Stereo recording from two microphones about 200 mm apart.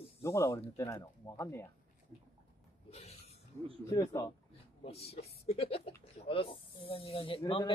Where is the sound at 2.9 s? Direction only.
30° left (ahead or behind).